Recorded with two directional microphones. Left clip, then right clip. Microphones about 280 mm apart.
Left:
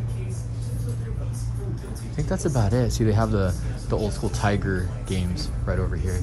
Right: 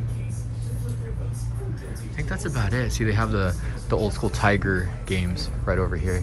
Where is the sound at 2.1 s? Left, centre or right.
Centre.